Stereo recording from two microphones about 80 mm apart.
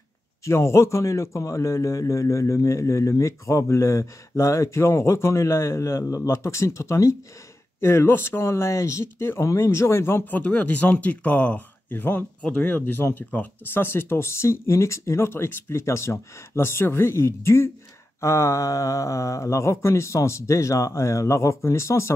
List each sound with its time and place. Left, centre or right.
0.5 s a man's voice: left
10.4 s speech: centre
12.4 s a man's voice: centre; by 22.1 s left